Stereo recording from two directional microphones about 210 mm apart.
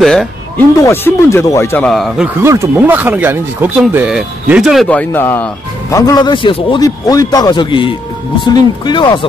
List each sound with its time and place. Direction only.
0.0 s speech: centre (ahead or behind)
0.7 s speech: 15° left (ahead or behind)